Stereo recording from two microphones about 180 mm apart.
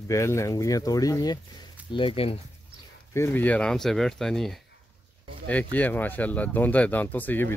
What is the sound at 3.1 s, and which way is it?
Speech, 15° left (ahead or behind).